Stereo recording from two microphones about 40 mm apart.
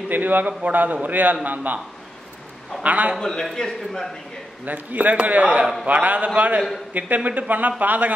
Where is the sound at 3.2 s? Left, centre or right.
Centre.